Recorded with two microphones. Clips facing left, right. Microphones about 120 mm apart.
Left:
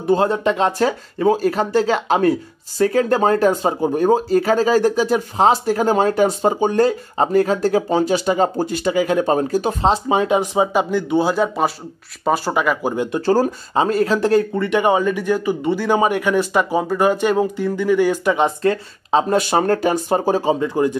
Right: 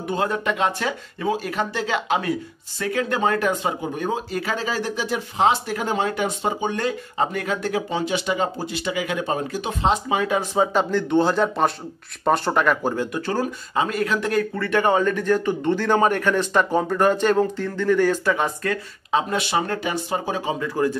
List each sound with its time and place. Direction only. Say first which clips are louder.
0.0 s speech: left 7 dB; 30° left (ahead or behind); by 12.9 s 5° left (ahead or behind)
12.9 s speech: left 4 dB; 20° left (ahead or behind)
13.2 s speech: left 8 dB; 35° left (ahead or behind)